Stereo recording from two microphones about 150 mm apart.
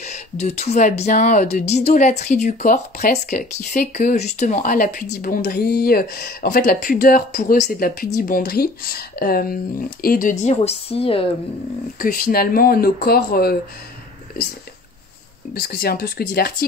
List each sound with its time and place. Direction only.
0.0 s speech: 50° left (ahead or behind); by 10.3 s 70° left (ahead or behind)
10.4 s speech: 45° left (ahead or behind)
12.0 s speech: 75° left (ahead or behind)
15.6 s speech: 85° left